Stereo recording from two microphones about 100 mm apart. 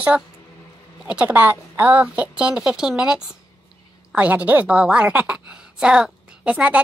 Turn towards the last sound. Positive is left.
turn(degrees=-10)  # may be behind; listen again after turning